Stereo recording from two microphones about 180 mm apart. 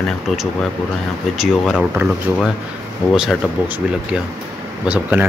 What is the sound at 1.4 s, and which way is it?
Speech, centre (ahead or behind).